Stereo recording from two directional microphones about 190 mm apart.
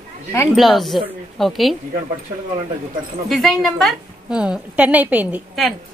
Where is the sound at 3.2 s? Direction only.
Centre (ahead or behind).